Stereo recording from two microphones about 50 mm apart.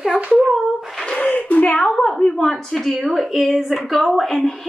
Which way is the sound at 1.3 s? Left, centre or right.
Left.